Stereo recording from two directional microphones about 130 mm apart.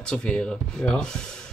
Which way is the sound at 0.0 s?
5° left (ahead or behind).